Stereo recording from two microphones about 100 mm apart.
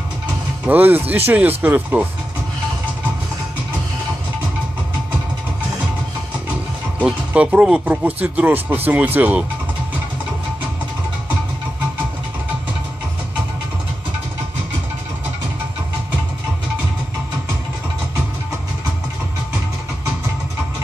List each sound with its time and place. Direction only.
0.7 s speech: 20° right (ahead or behind)
7.0 s speech: 15° right (ahead or behind)